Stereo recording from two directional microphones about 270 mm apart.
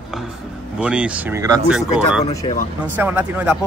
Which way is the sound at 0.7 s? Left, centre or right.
Centre.